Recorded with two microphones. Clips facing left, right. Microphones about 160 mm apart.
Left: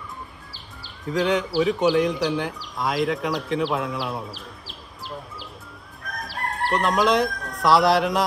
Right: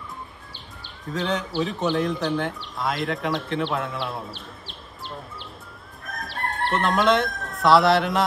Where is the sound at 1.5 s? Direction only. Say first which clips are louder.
Left 5 dB; 5° left (ahead or behind).